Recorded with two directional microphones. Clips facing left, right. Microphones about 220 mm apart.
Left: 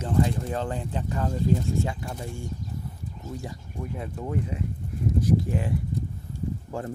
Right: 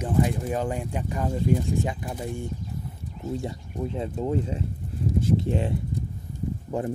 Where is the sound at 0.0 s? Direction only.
15° right (ahead or behind).